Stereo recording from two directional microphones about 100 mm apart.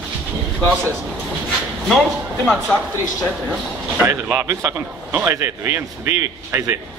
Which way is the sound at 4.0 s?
20° right (ahead or behind).